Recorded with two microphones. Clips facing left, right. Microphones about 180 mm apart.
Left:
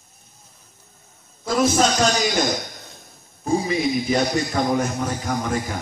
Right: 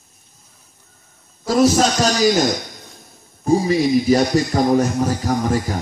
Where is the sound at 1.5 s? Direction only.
35° right (ahead or behind).